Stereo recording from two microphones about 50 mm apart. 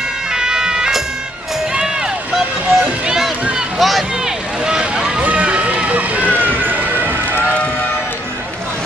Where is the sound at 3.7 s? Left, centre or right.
Centre.